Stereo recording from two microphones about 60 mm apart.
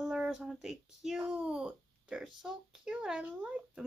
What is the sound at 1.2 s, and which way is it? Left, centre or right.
A child's voice, right.